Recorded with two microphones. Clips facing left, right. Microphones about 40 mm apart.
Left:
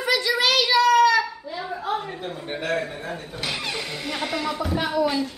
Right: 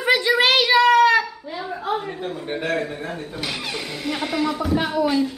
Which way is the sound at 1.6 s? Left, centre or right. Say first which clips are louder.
Right 2 dB; centre.